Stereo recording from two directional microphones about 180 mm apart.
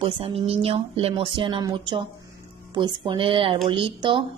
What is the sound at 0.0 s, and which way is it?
Speech, 30° right (ahead or behind).